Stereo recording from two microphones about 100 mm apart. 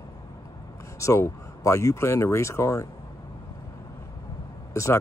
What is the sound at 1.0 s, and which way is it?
Speech, 30° left (ahead or behind).